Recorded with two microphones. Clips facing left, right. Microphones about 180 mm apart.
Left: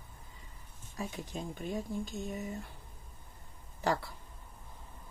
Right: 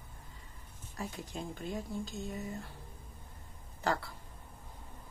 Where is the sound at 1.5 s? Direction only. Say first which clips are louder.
Left 3 dB; 15° left (ahead or behind).